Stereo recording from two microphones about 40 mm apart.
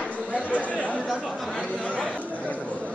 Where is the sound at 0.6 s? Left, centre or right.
Left.